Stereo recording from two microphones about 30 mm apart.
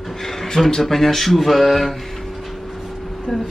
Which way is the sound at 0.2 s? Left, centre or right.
Centre.